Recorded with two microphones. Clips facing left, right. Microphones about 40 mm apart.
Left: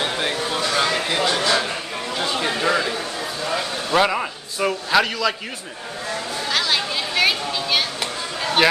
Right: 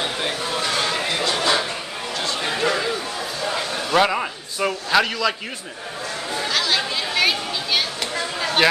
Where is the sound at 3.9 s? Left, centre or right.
Centre.